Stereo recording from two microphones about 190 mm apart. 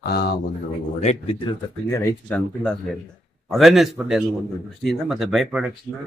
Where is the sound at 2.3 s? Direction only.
5° left (ahead or behind).